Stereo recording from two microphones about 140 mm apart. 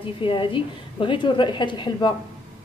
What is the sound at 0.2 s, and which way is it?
A woman's voice, 40° left (ahead or behind).